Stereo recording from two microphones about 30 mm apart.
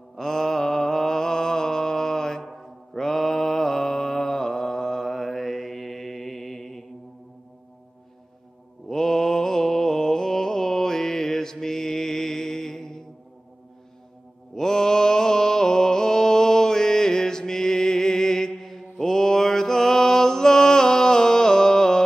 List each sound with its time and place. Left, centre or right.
0.1 s mantra: centre
8.8 s mantra: centre
14.5 s mantra: centre